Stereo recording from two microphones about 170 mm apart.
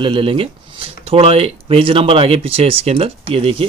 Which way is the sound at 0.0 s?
30° right (ahead or behind).